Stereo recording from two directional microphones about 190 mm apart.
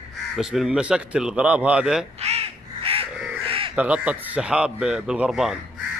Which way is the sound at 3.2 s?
5° right (ahead or behind).